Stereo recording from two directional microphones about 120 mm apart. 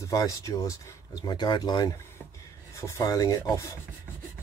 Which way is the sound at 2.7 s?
25° left (ahead or behind).